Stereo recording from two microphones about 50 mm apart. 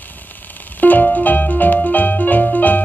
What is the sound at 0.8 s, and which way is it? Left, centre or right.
Music, left.